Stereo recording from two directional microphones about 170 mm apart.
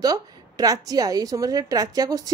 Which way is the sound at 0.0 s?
20° right (ahead or behind).